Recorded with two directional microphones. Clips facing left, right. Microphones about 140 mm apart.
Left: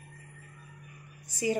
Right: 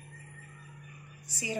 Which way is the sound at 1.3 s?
45° left (ahead or behind).